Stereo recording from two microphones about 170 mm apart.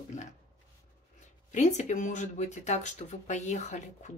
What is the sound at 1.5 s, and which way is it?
Speech, 45° left (ahead or behind).